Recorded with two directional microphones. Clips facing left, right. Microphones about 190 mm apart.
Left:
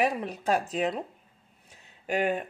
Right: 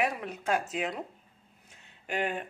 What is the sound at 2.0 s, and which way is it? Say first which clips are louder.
Speech: left 5 dB; 40° left (ahead or behind).